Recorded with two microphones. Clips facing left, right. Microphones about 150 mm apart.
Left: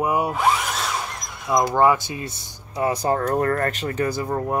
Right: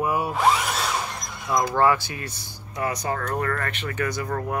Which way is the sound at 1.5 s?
20° left (ahead or behind).